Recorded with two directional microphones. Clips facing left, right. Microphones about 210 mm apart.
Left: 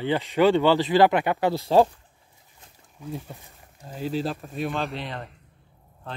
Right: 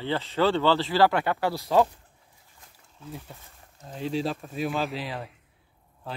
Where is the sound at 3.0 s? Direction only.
15° left (ahead or behind).